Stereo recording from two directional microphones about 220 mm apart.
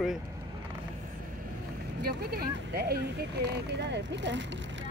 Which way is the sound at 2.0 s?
45° right (ahead or behind).